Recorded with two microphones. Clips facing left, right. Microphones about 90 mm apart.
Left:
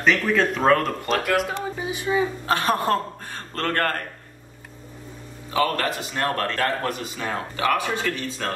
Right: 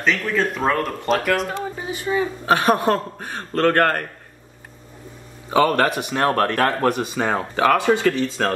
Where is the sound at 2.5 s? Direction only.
20° right (ahead or behind).